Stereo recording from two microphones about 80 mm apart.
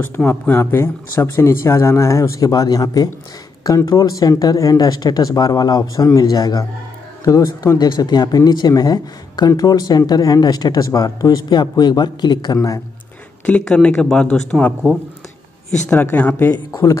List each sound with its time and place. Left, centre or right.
0.0 s speech: left
6.0 s speech: left
8.0 s a man's voice: left
10.8 s a man's voice: left
13.5 s speech: centre
15.9 s speech: left